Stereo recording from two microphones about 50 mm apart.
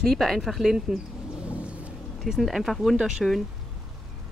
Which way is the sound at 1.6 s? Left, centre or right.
Right.